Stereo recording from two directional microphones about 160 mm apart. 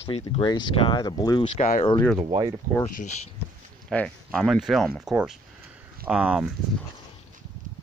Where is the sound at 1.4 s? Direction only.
50° left (ahead or behind).